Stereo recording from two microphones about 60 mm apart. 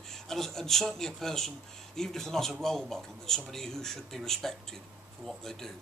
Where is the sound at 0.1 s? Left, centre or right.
Centre.